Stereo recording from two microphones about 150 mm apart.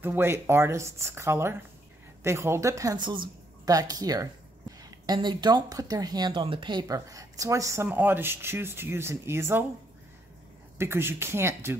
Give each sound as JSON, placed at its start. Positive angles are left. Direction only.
{"t": 0.0, "sound": "a woman's voice", "side_deg": -15}
{"t": 10.8, "sound": "speech", "side_deg": -15}